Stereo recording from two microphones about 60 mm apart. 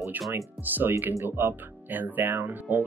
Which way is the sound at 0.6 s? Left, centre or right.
Right.